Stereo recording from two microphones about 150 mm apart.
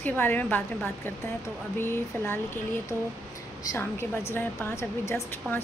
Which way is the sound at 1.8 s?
15° left (ahead or behind).